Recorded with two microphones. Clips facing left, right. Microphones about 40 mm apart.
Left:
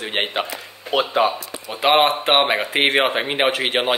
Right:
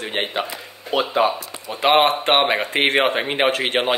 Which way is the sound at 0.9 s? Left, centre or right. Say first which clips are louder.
Even; left.